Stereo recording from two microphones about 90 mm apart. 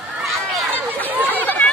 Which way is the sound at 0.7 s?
20° left (ahead or behind).